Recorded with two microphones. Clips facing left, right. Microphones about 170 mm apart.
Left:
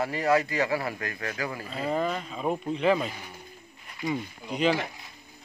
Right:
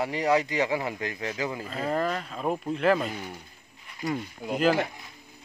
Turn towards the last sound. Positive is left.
turn(degrees=0)  # may be behind; listen again after turning